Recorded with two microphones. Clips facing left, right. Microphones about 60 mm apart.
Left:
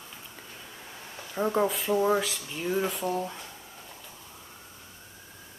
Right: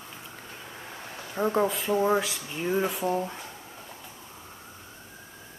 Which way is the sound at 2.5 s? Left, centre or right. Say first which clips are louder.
Right 2 dB; centre.